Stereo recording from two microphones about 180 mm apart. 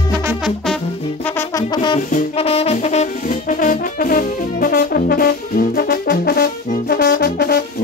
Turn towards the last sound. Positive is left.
turn(degrees=65)  # may be behind; listen again after turning